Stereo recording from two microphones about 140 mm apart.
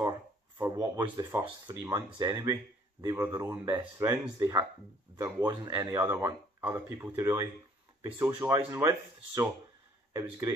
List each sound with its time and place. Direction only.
0.6 s speech: 25° right (ahead or behind)
3.2 s speech: 15° right (ahead or behind)